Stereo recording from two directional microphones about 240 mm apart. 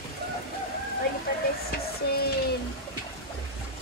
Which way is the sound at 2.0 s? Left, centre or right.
Left.